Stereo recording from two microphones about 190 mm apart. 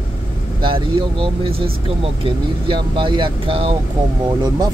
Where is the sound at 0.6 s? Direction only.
25° right (ahead or behind).